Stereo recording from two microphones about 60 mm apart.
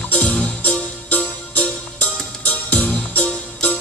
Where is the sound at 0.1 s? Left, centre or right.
Left.